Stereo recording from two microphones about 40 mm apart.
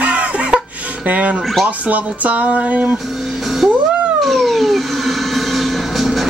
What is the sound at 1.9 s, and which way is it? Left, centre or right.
Speech, right.